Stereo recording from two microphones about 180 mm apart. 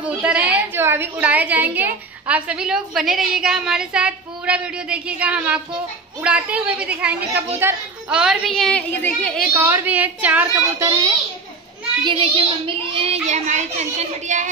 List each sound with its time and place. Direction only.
0.2 s a woman's voice: 10° right (ahead or behind)
9.5 s a woman's voice: 15° right (ahead or behind)
12.0 s a child's voice: 30° right (ahead or behind)